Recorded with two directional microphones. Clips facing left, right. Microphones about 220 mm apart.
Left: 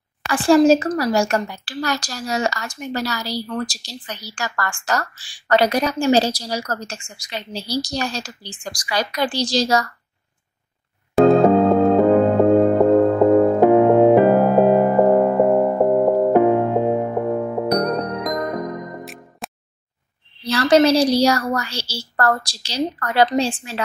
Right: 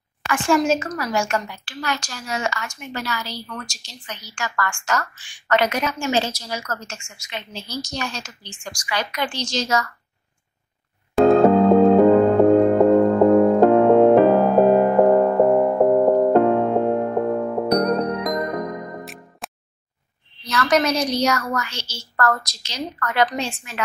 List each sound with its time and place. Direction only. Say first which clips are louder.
0.3 s a woman's voice: left 6 dB; 35° left (ahead or behind)
11.1 s music: left 1 dB; centre (ahead or behind)
19.4 s a sound: left 3 dB; centre (ahead or behind)
20.4 s a woman's voice: left 5 dB; 30° left (ahead or behind)